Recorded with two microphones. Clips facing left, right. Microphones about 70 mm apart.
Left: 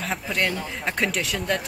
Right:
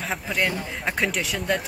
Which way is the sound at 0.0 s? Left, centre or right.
Centre.